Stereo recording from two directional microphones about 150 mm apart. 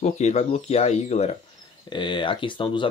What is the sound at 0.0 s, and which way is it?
Speech, 50° left (ahead or behind).